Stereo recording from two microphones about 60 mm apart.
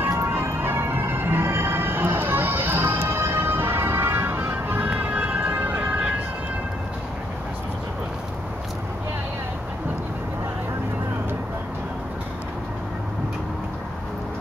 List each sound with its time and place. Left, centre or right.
0.1 s music: right
4.8 s emergency vehicle: right